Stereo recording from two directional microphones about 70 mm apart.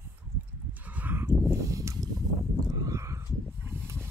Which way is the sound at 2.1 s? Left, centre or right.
Right.